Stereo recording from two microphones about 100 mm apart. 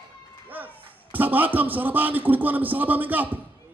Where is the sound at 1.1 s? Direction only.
15° right (ahead or behind).